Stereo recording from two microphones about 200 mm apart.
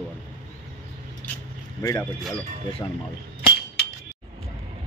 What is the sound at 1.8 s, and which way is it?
Speech, 15° left (ahead or behind).